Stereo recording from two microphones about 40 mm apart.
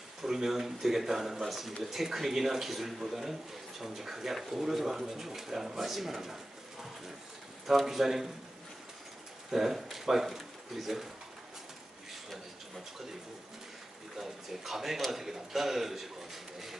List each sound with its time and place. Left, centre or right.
0.2 s speech: centre
9.5 s speech: centre
14.1 s a sound: centre
15.0 s a man's voice: centre